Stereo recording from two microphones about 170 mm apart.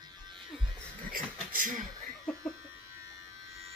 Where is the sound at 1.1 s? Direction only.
50° right (ahead or behind).